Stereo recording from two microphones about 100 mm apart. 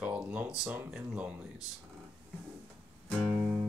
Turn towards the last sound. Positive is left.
turn(degrees=-15)  # may be behind; listen again after turning